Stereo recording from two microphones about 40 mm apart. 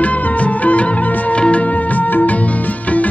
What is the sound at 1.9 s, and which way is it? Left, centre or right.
Music, left.